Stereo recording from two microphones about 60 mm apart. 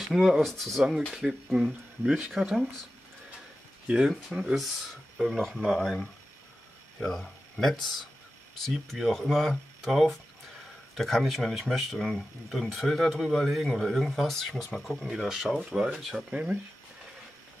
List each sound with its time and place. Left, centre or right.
0.0 s speech: centre
1.1 s speech: centre
3.8 s speech: centre
7.0 s speech: centre
16.3 s speech: centre